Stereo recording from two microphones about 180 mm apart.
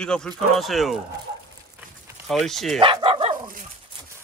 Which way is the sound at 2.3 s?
Centre (ahead or behind).